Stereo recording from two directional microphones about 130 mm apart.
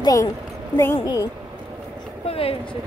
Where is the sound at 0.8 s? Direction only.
15° left (ahead or behind).